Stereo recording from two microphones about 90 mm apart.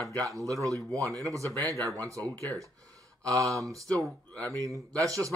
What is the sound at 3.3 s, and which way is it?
Speech, 40° right (ahead or behind).